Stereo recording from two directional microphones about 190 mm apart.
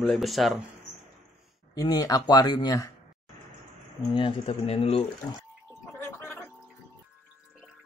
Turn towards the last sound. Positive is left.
turn(degrees=10)  # may be behind; listen again after turning